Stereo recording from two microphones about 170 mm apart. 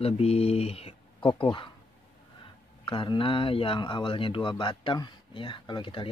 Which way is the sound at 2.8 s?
30° left (ahead or behind).